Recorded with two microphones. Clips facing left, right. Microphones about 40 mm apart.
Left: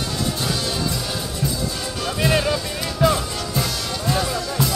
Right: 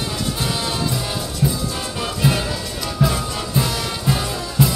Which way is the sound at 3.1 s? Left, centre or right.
Centre.